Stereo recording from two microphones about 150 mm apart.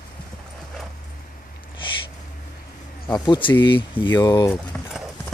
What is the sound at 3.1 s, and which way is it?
Speech, 30° left (ahead or behind).